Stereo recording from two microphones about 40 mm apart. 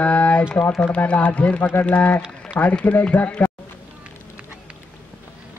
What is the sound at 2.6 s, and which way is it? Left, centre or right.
Speech, left.